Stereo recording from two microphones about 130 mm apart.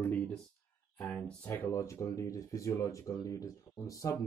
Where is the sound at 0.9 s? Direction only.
10° left (ahead or behind).